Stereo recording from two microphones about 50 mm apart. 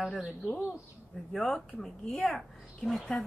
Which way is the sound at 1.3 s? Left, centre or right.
Centre.